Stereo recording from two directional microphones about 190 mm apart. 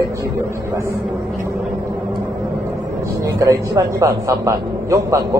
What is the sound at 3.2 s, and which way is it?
A man's voice, 15° right (ahead or behind).